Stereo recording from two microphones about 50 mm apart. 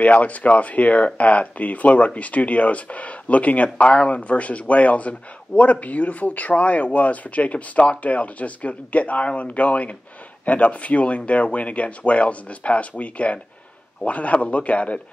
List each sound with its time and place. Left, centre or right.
0.0 s speech: left